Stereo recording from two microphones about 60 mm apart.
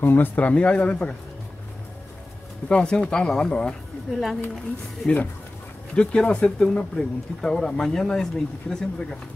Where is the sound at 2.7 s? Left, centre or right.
Centre.